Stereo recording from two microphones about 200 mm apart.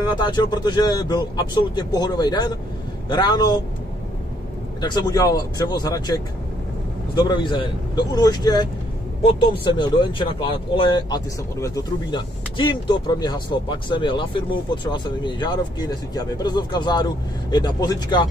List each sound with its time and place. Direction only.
0.0 s speech: 20° left (ahead or behind)
4.8 s speech: 20° left (ahead or behind)